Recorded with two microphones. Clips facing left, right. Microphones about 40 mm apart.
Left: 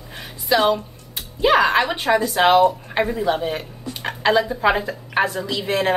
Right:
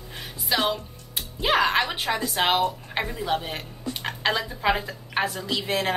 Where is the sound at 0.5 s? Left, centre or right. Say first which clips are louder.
Left 7 dB; left.